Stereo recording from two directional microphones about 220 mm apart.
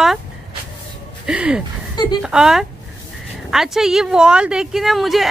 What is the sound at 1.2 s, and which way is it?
A woman's voice, 5° right (ahead or behind).